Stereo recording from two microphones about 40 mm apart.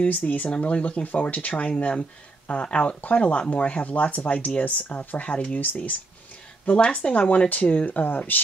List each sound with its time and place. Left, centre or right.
0.0 s speech: left